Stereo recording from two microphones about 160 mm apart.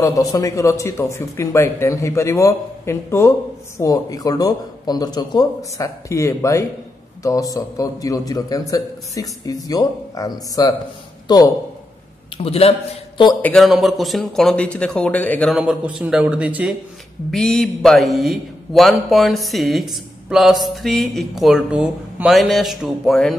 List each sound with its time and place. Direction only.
0.0 s a man's voice: 20° left (ahead or behind)
12.4 s a man's voice: 40° left (ahead or behind)
13.4 s a man's voice: 5° left (ahead or behind)
15.5 s speech: 5° right (ahead or behind)
17.3 s a man's voice: centre (ahead or behind)